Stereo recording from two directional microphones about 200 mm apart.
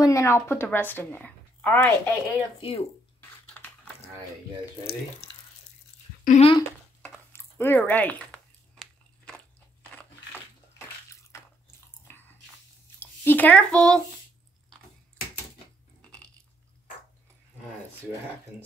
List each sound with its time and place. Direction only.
0.0 s speech: 15° left (ahead or behind)
2.6 s speech: 30° left (ahead or behind)
3.5 s a sound: 10° left (ahead or behind)
6.2 s speech: 30° left (ahead or behind)
7.0 s a sound: 10° left (ahead or behind)
13.0 s speech: 10° left (ahead or behind)